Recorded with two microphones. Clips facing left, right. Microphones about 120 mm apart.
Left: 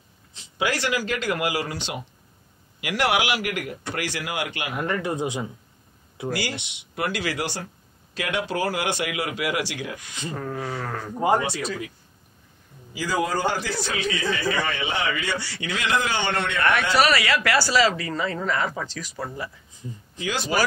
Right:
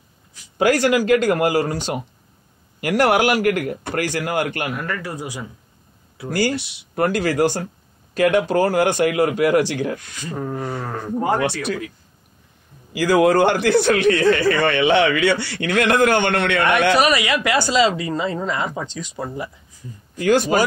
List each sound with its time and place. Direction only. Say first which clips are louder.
0.6 s a man's voice: right 9 dB; 45° right (ahead or behind)
4.7 s speech: left 2 dB; 20° left (ahead or behind)
7.0 s a man's voice: right 9 dB; 45° right (ahead or behind)
10.3 s speech: right 5 dB; 15° right (ahead or behind)
11.3 s speech: right 3 dB; 70° right (ahead or behind)
12.9 s a man's voice: right 10 dB; 65° right (ahead or behind)
16.9 s speech: right 3 dB; 15° right (ahead or behind)
20.2 s a man's voice: right 11 dB; 50° right (ahead or behind)